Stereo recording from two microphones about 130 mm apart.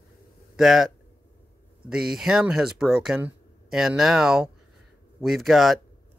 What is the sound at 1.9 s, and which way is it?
Speech, 5° right (ahead or behind).